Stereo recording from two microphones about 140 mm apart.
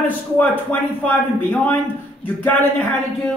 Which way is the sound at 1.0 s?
10° left (ahead or behind).